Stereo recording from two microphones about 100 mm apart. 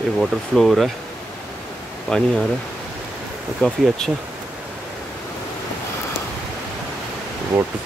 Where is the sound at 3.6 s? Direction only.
5° left (ahead or behind).